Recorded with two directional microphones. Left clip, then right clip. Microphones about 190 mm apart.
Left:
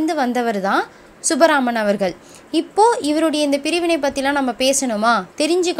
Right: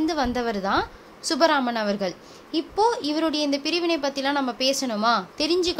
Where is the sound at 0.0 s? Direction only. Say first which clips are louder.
Left 6 dB; 10° left (ahead or behind).